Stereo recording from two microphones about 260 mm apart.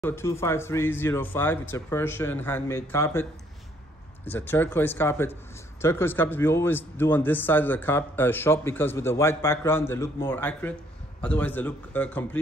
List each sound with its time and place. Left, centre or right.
0.0 s a man's voice: centre